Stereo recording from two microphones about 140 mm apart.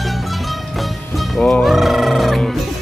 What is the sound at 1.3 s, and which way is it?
Music, 5° left (ahead or behind).